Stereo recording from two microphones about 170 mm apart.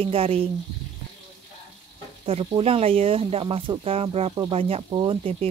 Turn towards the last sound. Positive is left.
turn(degrees=-30)  # may be behind; listen again after turning